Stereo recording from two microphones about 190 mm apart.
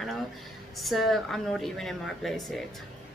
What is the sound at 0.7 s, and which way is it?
Speech, centre (ahead or behind).